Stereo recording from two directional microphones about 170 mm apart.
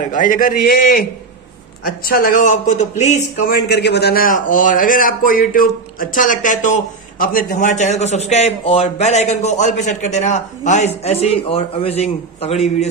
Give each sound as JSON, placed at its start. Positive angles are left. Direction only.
{"t": 0.1, "sound": "a man's voice", "side_deg": 50}
{"t": 3.4, "sound": "a man's voice", "side_deg": 70}